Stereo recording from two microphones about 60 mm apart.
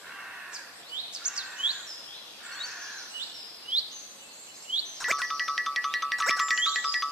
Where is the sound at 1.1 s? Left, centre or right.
Centre.